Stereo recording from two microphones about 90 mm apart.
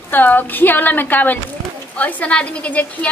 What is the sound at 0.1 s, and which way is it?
A woman's voice, 20° left (ahead or behind).